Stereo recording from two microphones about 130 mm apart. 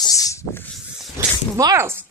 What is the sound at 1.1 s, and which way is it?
Zipper, 25° right (ahead or behind).